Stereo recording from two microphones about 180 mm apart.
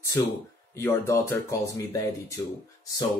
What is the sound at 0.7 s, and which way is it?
Speech, 15° left (ahead or behind).